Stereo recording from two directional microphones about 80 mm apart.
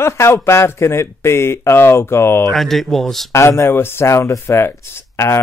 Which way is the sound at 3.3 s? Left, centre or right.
Left.